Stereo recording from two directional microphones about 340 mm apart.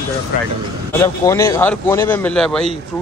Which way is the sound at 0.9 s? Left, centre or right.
Centre.